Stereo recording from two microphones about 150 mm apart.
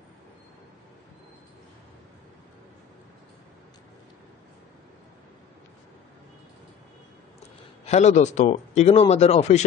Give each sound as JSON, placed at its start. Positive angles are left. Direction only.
{"t": 7.8, "sound": "a man's voice", "side_deg": 50}